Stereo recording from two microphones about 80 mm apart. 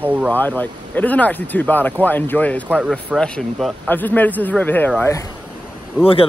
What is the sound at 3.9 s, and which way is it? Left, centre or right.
Speech, left.